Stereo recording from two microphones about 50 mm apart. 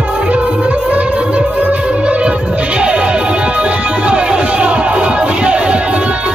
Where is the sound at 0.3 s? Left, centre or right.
Right.